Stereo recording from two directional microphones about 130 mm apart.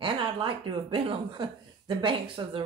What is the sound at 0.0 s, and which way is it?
Speech, 40° right (ahead or behind).